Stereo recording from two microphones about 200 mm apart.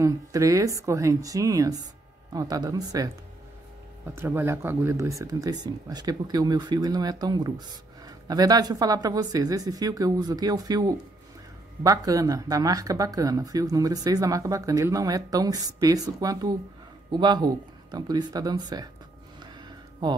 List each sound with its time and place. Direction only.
0.0 s speech: 15° right (ahead or behind)
4.1 s speech: 10° right (ahead or behind)